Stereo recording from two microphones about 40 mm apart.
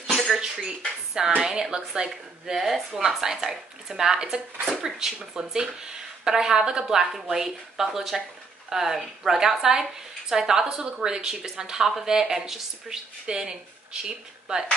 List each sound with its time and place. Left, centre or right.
0.4 s dishes: centre
1.4 s speech: centre
11.6 s speech: centre